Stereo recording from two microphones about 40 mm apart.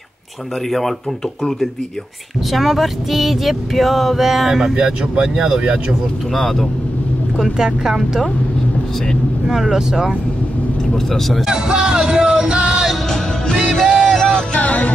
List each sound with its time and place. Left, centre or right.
0.7 s speech: centre
2.5 s a sound: centre
6.3 s a sound: centre
7.5 s speech: centre
9.5 s speech: centre
11.1 s a sound: centre
11.4 s music: centre
13.7 s music: centre
14.5 s music: left